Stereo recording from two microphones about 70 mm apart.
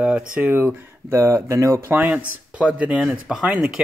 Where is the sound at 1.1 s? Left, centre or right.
Right.